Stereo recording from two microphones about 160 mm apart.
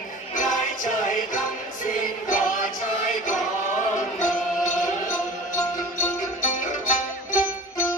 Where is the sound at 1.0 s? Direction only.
55° left (ahead or behind).